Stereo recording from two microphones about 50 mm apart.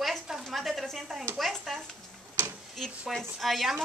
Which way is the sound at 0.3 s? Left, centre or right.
Centre.